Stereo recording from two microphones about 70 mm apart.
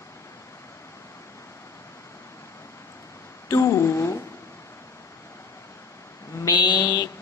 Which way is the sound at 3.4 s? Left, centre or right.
Left.